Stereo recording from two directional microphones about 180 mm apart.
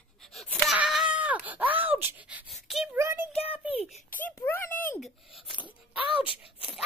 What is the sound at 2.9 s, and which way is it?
Child singing, 15° right (ahead or behind).